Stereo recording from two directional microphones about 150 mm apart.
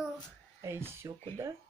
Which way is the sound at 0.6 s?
15° right (ahead or behind).